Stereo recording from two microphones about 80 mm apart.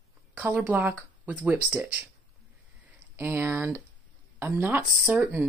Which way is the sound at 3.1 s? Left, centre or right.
Right.